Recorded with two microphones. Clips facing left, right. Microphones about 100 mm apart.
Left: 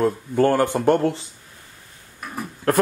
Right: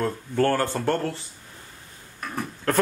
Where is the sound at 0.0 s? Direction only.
15° left (ahead or behind).